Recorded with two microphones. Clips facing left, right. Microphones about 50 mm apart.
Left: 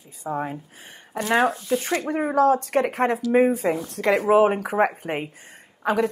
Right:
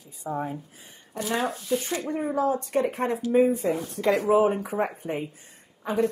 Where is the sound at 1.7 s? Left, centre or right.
Left.